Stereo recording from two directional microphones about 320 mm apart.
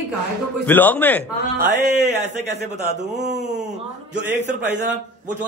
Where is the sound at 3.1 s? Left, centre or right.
Right.